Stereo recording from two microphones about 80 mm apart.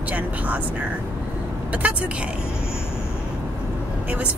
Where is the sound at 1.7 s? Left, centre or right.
Centre.